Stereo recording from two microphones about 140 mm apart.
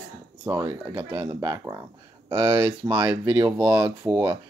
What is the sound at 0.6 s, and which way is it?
Speech, 30° right (ahead or behind).